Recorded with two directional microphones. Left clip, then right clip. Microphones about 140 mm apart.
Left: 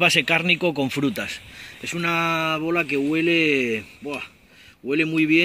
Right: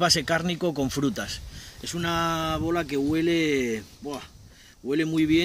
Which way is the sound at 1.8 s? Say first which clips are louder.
Left 4 dB; 15° right (ahead or behind).